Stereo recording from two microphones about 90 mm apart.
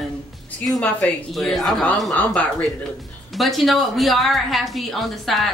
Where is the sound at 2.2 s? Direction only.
15° left (ahead or behind).